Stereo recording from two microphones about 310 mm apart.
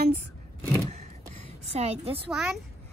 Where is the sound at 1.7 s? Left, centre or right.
Centre.